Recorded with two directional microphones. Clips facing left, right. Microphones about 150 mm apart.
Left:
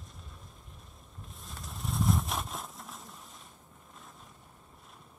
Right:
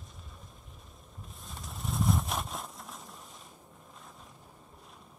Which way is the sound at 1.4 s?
Centre (ahead or behind).